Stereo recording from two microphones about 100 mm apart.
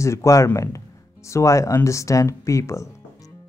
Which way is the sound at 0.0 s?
30° left (ahead or behind).